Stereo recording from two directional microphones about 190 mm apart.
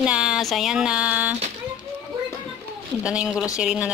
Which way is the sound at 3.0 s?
5° right (ahead or behind).